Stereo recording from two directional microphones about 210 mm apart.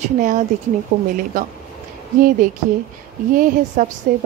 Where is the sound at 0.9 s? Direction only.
50° right (ahead or behind).